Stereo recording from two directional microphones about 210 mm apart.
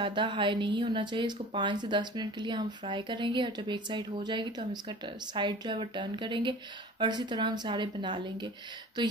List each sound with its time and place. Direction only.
0.0 s speech: 20° right (ahead or behind)